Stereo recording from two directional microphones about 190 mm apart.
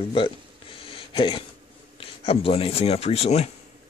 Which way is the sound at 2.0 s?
30° left (ahead or behind).